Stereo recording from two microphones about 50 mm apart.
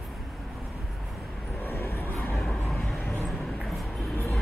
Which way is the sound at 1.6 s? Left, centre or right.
Left.